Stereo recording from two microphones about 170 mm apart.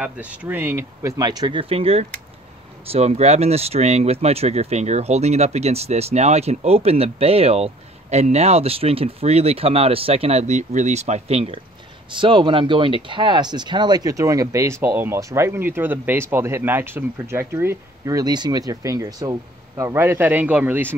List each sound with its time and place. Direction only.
0.0 s speech: 10° right (ahead or behind)